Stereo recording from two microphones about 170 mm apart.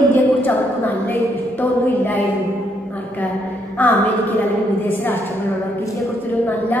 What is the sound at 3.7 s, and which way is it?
A woman's voice, 10° left (ahead or behind).